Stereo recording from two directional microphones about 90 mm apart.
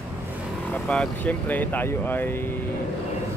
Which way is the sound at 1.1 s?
20° left (ahead or behind).